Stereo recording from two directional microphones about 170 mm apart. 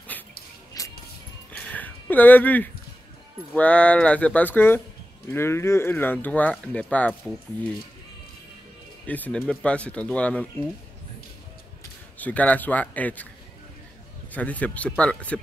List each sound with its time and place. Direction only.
0.8 s music: 20° left (ahead or behind)
1.6 s a sound: 10° left (ahead or behind)
3.5 s speech: 10° left (ahead or behind)
9.0 s speech: 10° left (ahead or behind)
12.2 s speech: 10° left (ahead or behind)
14.3 s speech: 10° left (ahead or behind)